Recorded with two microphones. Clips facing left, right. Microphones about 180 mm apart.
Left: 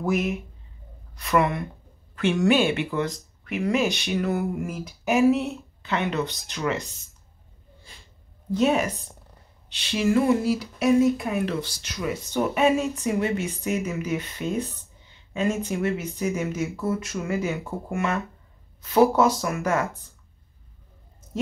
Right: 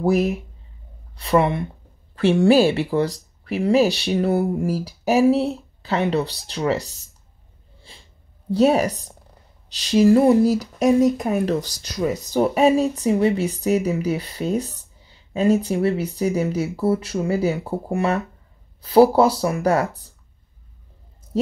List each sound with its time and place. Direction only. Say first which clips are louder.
0.0 s speech: right 6 dB; 35° right (ahead or behind)
7.9 s a sound: right 4 dB; 30° right (ahead or behind)
8.5 s speech: right 5 dB; 35° right (ahead or behind)